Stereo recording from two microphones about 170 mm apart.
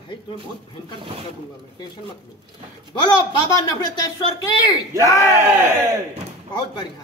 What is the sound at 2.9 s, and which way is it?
Speech, 25° left (ahead or behind).